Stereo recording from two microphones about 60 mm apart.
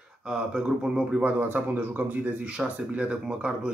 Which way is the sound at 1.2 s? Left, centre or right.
Right.